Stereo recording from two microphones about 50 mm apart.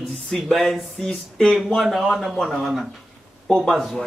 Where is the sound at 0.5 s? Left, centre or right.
Centre.